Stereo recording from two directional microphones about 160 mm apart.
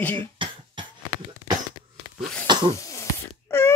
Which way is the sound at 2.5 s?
30° right (ahead or behind).